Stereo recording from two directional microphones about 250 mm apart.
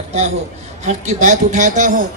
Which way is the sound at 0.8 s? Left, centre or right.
Right.